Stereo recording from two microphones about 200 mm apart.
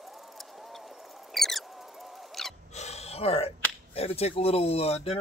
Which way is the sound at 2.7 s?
30° left (ahead or behind).